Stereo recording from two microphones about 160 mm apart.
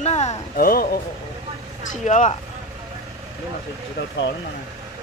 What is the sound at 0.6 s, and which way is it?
Speech, 65° left (ahead or behind).